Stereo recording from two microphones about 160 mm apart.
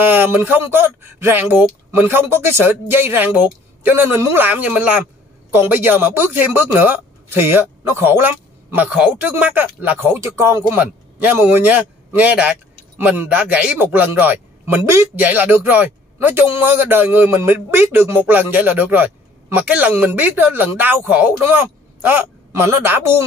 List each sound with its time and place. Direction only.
0.0 s speech: 15° right (ahead or behind)
22.7 s speech: 15° right (ahead or behind)